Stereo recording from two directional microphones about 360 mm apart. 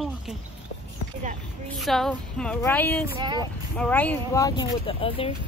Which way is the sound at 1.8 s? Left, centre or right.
Centre.